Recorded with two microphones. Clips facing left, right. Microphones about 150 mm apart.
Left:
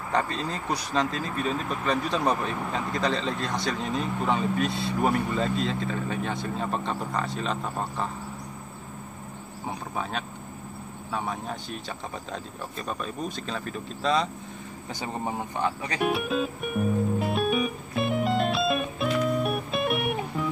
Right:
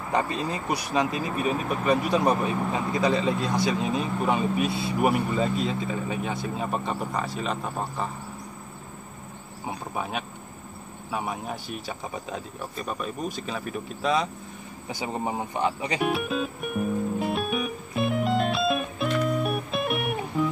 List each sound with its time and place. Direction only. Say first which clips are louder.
0.1 s speech: right 1 dB; 15° right (ahead or behind)
9.7 s cricket: right 1 dB; 10° right (ahead or behind)
11.1 s speech: right 1 dB; 10° right (ahead or behind)
16.0 s music: left 2 dB; centre (ahead or behind)